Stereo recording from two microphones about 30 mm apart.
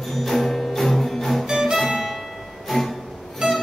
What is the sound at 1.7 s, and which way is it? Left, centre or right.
Music, centre.